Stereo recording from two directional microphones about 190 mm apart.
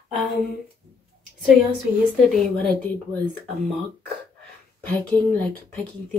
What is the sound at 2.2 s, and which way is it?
Speech, centre (ahead or behind).